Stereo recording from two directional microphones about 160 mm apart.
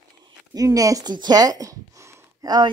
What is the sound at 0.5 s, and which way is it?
Speech, 20° right (ahead or behind).